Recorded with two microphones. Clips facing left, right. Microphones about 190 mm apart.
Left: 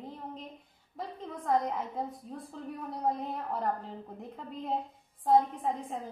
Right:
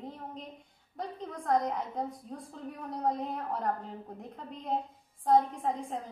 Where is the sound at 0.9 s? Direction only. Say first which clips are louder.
Right 1 dB; 5° left (ahead or behind).